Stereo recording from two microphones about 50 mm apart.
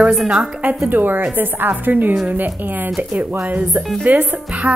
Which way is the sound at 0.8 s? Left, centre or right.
Right.